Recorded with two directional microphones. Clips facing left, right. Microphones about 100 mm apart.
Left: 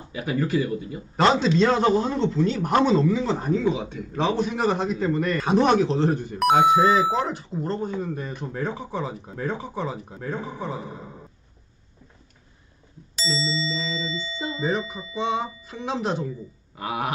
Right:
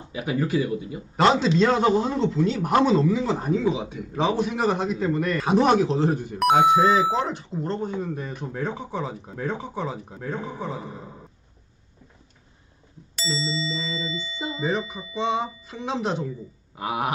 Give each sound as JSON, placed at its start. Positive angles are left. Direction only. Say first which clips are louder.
{"t": 0.1, "sound": "speech", "louder": "even", "side_deg": -20}
{"t": 1.1, "sound": "a man's voice", "louder": "even", "side_deg": 0}
{"t": 13.3, "sound": "music", "louder": "left 1 dB", "side_deg": -10}
{"t": 14.7, "sound": "a man's voice", "louder": "even", "side_deg": -5}
{"t": 16.7, "sound": "speech", "louder": "right 1 dB", "side_deg": -20}